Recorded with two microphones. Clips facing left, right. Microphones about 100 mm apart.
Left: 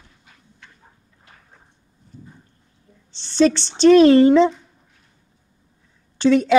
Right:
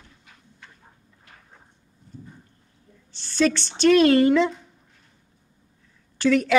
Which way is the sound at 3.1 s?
25° left (ahead or behind).